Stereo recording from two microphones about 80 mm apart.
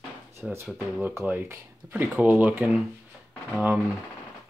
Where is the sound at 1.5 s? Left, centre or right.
Right.